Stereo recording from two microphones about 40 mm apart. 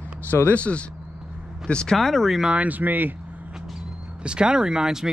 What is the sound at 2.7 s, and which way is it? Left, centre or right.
Speech, right.